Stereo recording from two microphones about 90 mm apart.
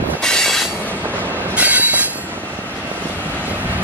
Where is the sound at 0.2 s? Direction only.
5° left (ahead or behind).